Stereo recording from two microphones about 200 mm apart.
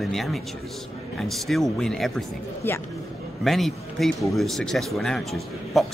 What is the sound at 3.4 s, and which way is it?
A man's voice, centre (ahead or behind).